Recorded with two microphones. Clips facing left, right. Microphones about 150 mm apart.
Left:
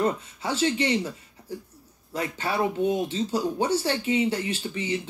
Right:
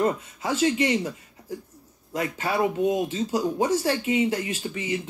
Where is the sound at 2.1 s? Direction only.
30° left (ahead or behind).